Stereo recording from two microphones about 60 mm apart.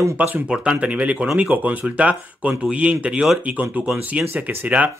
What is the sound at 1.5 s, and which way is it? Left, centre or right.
Speech, right.